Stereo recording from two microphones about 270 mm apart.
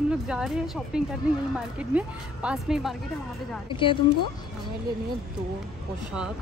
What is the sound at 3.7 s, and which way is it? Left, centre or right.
Speech, centre.